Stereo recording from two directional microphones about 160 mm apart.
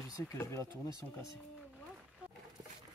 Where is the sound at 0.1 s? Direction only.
20° left (ahead or behind).